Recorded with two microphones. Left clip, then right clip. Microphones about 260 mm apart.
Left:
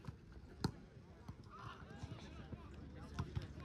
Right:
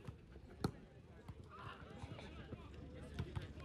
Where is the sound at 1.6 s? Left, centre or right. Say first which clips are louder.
Even; left.